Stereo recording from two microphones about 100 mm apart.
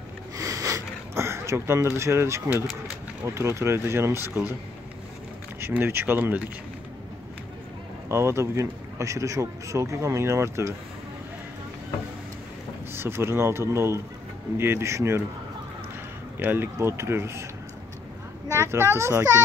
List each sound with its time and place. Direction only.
0.4 s sniff: 35° right (ahead or behind)
3.3 s speech: 25° right (ahead or behind)
5.6 s speech: 20° right (ahead or behind)
8.1 s speech: 25° right (ahead or behind)
12.9 s speech: 25° right (ahead or behind)
16.3 s speech: 20° right (ahead or behind)
18.5 s speech: 25° right (ahead or behind)